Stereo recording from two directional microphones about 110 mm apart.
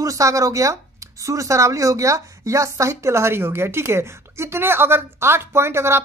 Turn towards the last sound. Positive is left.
turn(degrees=-25)  # may be behind; listen again after turning